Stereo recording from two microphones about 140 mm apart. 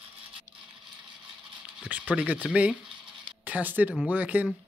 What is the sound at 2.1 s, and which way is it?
Speech, 10° right (ahead or behind).